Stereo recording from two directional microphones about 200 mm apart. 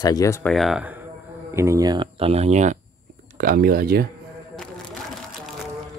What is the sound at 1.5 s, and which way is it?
Speech, 15° right (ahead or behind).